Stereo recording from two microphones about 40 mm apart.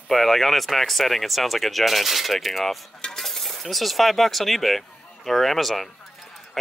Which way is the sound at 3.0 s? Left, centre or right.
Centre.